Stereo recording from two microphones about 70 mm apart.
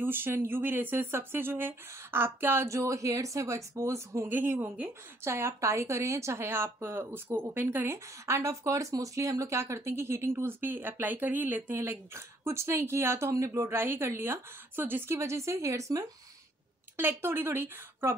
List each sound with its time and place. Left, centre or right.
0.0 s a woman's voice: right
4.3 s a woman's voice: right
15.1 s a woman's voice: right
16.9 s a woman's voice: right